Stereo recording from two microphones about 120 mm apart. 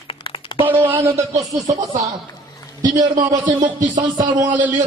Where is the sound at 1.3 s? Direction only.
30° right (ahead or behind).